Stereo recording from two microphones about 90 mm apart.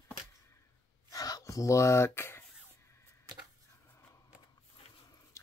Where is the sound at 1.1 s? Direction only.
40° left (ahead or behind).